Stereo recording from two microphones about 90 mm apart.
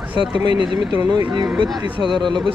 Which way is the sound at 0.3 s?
60° right (ahead or behind).